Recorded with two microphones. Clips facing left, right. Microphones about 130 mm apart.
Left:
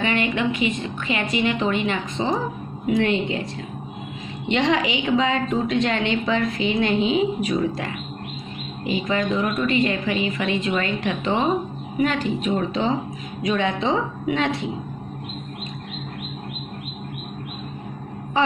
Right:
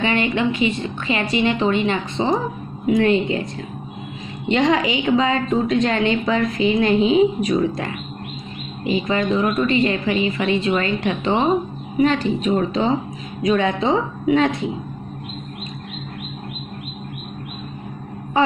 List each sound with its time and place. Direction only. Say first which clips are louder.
0.0 s a woman's voice: right 3 dB; 30° right (ahead or behind)
4.5 s a woman's voice: right 3 dB; 40° right (ahead or behind)
12.4 s a woman's voice: right 4 dB; 40° right (ahead or behind)